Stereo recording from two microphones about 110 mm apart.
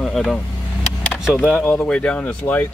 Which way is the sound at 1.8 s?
10° left (ahead or behind).